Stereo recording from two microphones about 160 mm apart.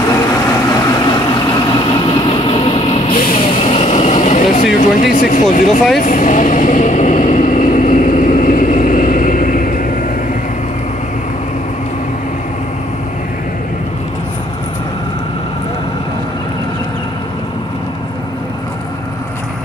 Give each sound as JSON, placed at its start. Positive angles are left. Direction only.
{"t": 0.1, "sound": "vehicle", "side_deg": 25}
{"t": 3.2, "sound": "music", "side_deg": 60}
{"t": 3.5, "sound": "vehicle", "side_deg": 40}
{"t": 5.0, "sound": "speech", "side_deg": 65}
{"t": 5.9, "sound": "vehicle", "side_deg": 55}